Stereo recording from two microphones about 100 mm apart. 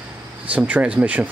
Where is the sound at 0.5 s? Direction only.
15° right (ahead or behind).